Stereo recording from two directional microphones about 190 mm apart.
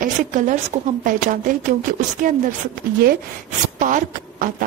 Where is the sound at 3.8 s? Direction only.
45° right (ahead or behind).